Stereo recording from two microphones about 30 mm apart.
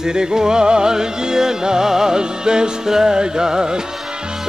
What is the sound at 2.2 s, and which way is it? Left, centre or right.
Music, right.